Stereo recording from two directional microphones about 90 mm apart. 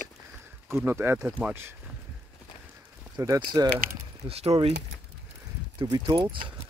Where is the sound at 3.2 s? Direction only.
45° right (ahead or behind).